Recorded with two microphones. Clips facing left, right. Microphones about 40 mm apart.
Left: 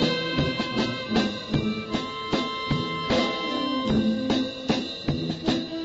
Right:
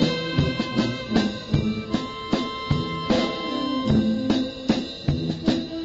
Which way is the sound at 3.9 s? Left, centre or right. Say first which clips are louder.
Right 3 dB; left.